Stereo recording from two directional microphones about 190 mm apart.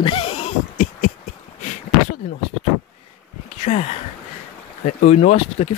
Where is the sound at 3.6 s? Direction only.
35° left (ahead or behind).